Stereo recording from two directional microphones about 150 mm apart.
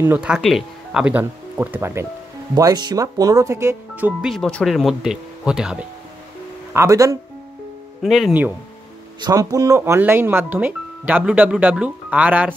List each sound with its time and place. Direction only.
0.0 s speech: 10° right (ahead or behind)
4.3 s speech: 5° left (ahead or behind)
6.7 s speech: 20° right (ahead or behind)
8.0 s speech: centre (ahead or behind)
9.2 s speech: 25° right (ahead or behind)